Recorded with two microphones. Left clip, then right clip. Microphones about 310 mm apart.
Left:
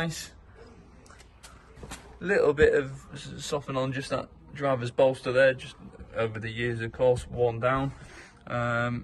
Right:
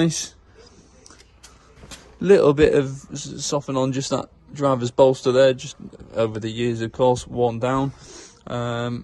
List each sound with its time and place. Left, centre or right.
0.0 s speech: centre
2.2 s speech: centre